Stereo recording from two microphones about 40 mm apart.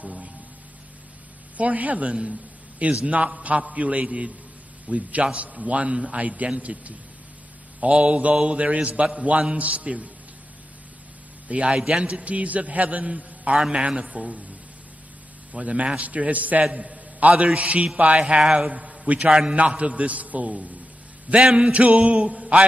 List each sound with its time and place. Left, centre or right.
1.6 s a man's voice: right
11.4 s a man's voice: right
13.6 s a sound: right
14.1 s a man's voice: right
15.5 s a man's voice: right
16.7 s a man's voice: right
18.4 s a man's voice: centre
18.7 s a sound: right
19.5 s a man's voice: right
21.3 s a sound: right
21.7 s a man's voice: right